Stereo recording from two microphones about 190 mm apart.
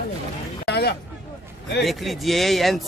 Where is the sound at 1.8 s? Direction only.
Centre (ahead or behind).